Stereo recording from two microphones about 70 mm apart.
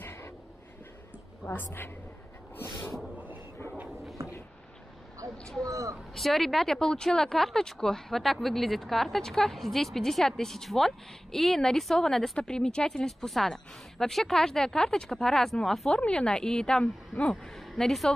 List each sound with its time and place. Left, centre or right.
0.0 s a sound: left
1.5 s a woman's voice: left
4.2 s a sound: right
5.4 s a woman's voice: centre
5.7 s speech: right
6.1 s speech: centre
15.9 s a woman's voice: centre